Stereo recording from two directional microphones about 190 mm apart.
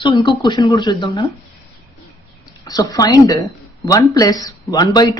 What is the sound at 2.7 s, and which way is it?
A woman's voice, 20° left (ahead or behind).